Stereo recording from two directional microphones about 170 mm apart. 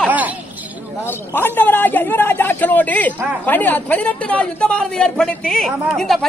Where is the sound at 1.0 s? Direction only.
10° left (ahead or behind).